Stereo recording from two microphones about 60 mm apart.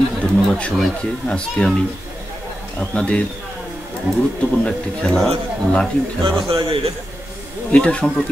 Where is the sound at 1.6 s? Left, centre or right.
Centre.